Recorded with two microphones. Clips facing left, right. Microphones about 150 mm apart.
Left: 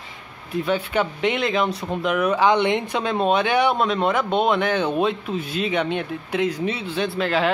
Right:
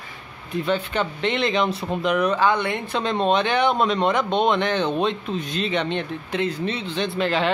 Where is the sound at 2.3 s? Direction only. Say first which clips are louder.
Left 3 dB; 15° left (ahead or behind).